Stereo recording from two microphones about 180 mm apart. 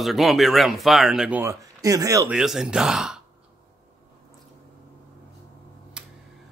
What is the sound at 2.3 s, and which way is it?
Speech, 5° right (ahead or behind).